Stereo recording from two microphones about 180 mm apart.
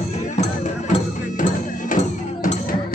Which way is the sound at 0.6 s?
40° left (ahead or behind).